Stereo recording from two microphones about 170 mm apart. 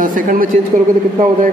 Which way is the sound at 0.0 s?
55° right (ahead or behind).